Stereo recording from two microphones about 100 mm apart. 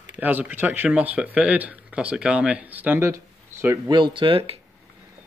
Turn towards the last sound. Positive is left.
turn(degrees=-75)  # may be behind; listen again after turning